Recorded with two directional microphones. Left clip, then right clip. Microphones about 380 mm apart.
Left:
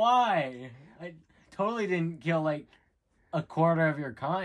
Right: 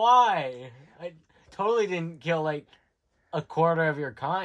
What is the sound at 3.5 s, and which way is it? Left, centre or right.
Speech, centre.